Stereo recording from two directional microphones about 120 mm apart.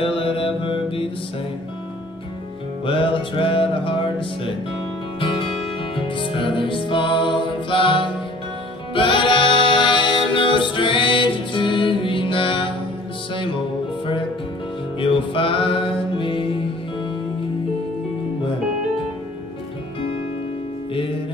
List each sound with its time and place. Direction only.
0.0 s mantra: 45° left (ahead or behind)
2.8 s music: 45° left (ahead or behind)
5.9 s music: 45° left (ahead or behind)
15.0 s music: 45° left (ahead or behind)